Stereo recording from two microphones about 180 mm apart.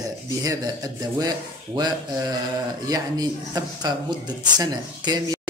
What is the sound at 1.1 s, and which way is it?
Speech, 25° right (ahead or behind).